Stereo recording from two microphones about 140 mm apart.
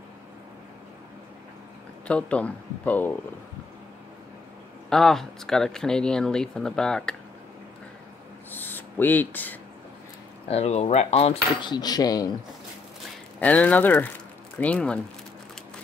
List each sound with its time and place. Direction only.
2.0 s speech: 10° left (ahead or behind)
4.8 s speech: 5° left (ahead or behind)
8.5 s speech: 15° left (ahead or behind)
10.5 s speech: 50° left (ahead or behind)
11.6 s speech: 30° left (ahead or behind)
13.4 s speech: 10° left (ahead or behind)